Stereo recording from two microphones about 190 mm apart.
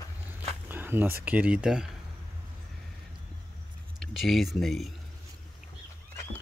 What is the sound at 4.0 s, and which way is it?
Speech, centre (ahead or behind).